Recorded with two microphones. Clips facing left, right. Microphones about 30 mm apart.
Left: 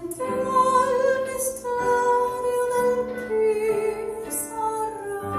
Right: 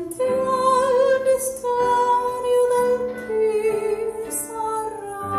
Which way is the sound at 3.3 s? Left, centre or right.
Right.